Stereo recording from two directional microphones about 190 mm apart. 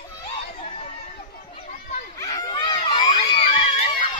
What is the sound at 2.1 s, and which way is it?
Crowd, 20° left (ahead or behind).